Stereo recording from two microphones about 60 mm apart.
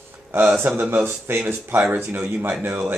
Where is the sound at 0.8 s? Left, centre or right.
Right.